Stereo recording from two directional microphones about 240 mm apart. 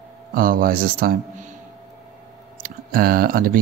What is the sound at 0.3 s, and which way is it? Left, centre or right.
Speech, right.